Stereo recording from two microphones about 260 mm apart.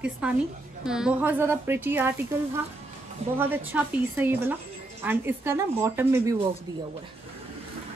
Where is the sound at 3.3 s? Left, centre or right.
Centre.